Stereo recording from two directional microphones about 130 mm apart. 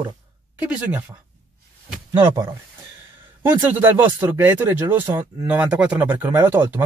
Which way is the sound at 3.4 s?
15° right (ahead or behind).